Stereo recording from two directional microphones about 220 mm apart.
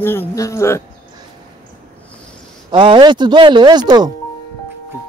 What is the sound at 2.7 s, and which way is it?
Speech, 20° right (ahead or behind).